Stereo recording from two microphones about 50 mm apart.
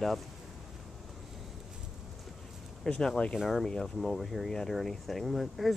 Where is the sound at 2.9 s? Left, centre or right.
Centre.